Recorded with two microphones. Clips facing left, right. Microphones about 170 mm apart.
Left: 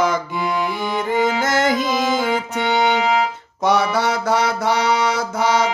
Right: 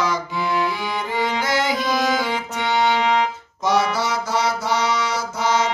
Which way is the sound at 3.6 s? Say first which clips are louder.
Left 3 dB; 60° left (ahead or behind).